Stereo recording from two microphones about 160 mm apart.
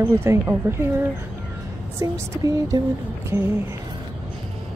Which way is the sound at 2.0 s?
20° right (ahead or behind).